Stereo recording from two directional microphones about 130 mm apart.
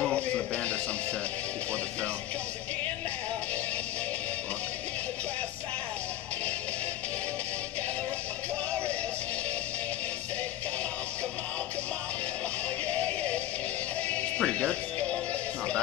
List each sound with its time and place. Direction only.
12.9 s music: 10° left (ahead or behind)